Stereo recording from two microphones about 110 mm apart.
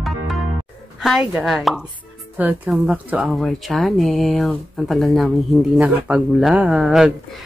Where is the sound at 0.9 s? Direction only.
5° right (ahead or behind).